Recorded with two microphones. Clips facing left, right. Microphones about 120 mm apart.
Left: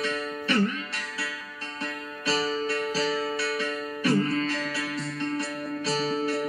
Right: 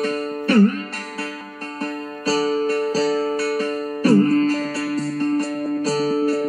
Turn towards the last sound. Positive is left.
turn(degrees=-45)  # may be behind; listen again after turning